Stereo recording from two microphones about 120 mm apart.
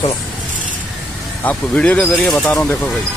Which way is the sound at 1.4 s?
10° left (ahead or behind).